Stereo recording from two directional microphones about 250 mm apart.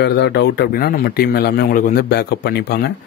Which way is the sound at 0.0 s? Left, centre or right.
Left.